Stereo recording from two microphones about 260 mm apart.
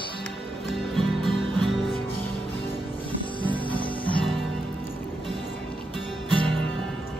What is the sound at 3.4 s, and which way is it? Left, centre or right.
Music, centre.